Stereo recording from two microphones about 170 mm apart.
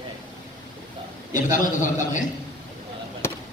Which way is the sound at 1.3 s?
50° left (ahead or behind).